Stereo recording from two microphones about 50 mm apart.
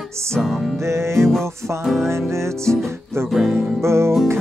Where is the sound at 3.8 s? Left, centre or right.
Right.